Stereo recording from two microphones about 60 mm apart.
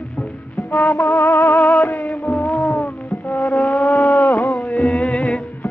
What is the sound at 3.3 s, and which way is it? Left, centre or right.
Vehicle, left.